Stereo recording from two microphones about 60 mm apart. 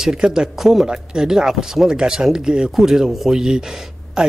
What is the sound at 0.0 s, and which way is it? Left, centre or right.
Speech, centre.